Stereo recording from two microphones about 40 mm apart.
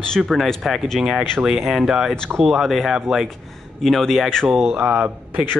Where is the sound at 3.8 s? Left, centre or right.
Centre.